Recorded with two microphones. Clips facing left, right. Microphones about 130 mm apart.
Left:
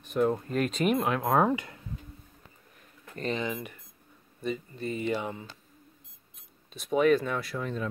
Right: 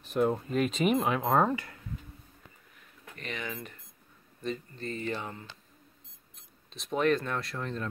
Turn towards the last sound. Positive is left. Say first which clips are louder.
# left 2 dB
turn(degrees=5)  # may be behind; listen again after turning